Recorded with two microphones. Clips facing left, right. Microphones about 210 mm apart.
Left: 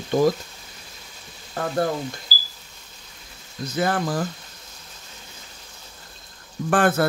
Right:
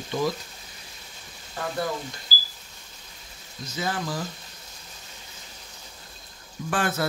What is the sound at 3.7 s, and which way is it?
Speech, 55° left (ahead or behind).